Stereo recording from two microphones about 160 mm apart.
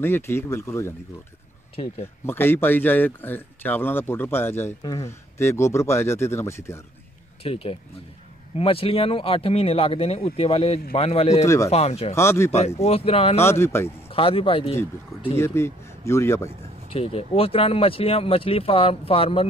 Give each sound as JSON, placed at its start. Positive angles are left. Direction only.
{"t": 0.0, "sound": "speech", "side_deg": 15}
{"t": 1.8, "sound": "speech", "side_deg": 35}
{"t": 2.2, "sound": "speech", "side_deg": 15}
{"t": 7.4, "sound": "speech", "side_deg": 35}
{"t": 11.4, "sound": "speech", "side_deg": 20}
{"t": 11.7, "sound": "speech", "side_deg": 40}
{"t": 12.2, "sound": "speech", "side_deg": 15}
{"t": 12.5, "sound": "speech", "side_deg": 40}
{"t": 13.4, "sound": "speech", "side_deg": 15}
{"t": 14.0, "sound": "speech", "side_deg": 35}
{"t": 15.3, "sound": "speech", "side_deg": 15}
{"t": 16.9, "sound": "speech", "side_deg": 40}